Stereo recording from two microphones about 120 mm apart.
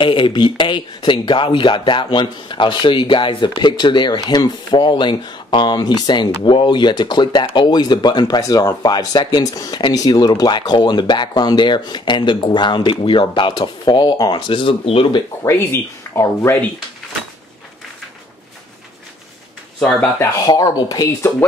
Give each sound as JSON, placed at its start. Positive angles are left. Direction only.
{"t": 0.0, "sound": "speech", "side_deg": 45}
{"t": 15.4, "sound": "speech", "side_deg": 20}
{"t": 19.8, "sound": "speech", "side_deg": 5}
{"t": 20.4, "sound": "speech", "side_deg": 35}